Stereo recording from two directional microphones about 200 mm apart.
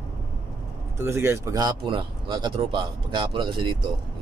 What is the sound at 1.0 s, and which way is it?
Speech, 10° right (ahead or behind).